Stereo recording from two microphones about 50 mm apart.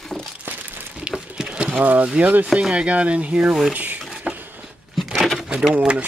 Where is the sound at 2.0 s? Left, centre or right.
Right.